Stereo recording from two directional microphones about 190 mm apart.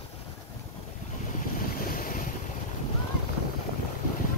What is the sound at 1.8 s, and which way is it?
Boat, 50° left (ahead or behind).